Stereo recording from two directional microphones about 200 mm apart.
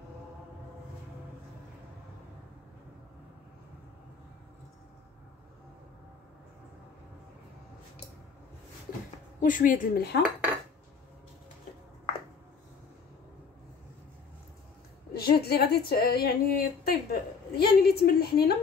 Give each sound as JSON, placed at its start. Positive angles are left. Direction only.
{"t": 9.4, "sound": "a woman's voice", "side_deg": 40}
{"t": 15.1, "sound": "a sound", "side_deg": 50}
{"t": 15.9, "sound": "a woman's voice", "side_deg": 50}